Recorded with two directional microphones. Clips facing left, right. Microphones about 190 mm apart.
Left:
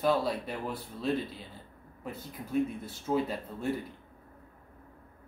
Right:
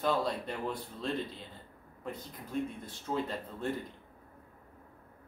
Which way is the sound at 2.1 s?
5° left (ahead or behind).